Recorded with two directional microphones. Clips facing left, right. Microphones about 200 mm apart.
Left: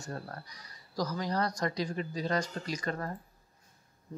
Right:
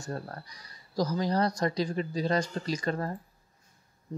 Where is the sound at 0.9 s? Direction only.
30° right (ahead or behind).